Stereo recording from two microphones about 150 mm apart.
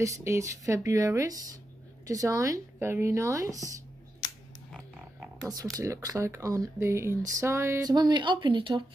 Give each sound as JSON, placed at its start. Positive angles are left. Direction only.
{"t": 0.0, "sound": "speech", "side_deg": -20}
{"t": 5.8, "sound": "speech", "side_deg": -20}